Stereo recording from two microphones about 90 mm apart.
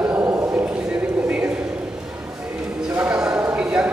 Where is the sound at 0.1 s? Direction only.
25° right (ahead or behind).